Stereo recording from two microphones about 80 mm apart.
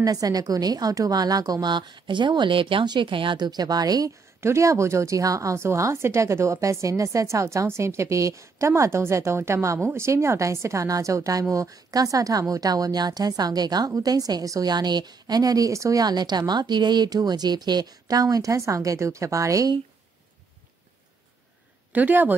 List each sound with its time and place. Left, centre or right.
0.0 s a woman's voice: right
4.4 s a woman's voice: right
21.9 s speech: right